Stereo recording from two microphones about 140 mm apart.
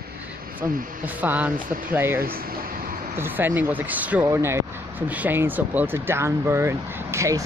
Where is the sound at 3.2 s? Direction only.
15° right (ahead or behind).